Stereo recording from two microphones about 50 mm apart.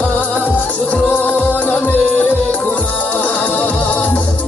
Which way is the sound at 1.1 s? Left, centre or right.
Left.